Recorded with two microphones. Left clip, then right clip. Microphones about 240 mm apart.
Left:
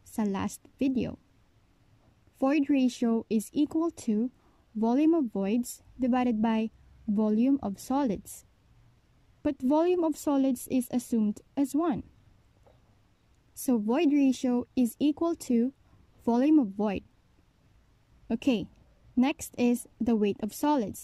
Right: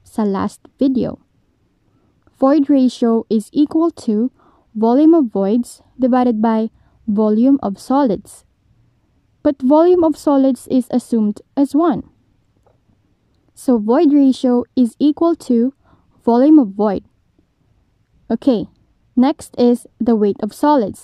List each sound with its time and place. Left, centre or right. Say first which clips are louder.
0.1 s speech: right 13 dB; right
2.3 s speech: right 13 dB; right
5.6 s speech: right 11 dB; right
6.0 s speech: right 13 dB; right
8.2 s speech: right 8 dB; right
9.4 s speech: right 14 dB; right
13.7 s speech: right 13 dB; right
18.2 s a woman's voice: right 13 dB; centre